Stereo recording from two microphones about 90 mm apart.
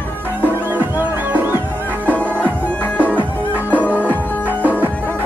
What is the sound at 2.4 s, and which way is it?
Music, 20° left (ahead or behind).